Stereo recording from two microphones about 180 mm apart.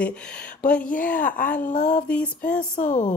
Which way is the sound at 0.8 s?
50° left (ahead or behind).